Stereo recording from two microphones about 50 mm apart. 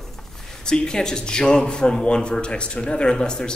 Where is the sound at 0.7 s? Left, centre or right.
Centre.